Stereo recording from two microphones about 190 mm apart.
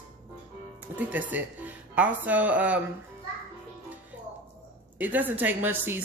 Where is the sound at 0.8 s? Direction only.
10° right (ahead or behind).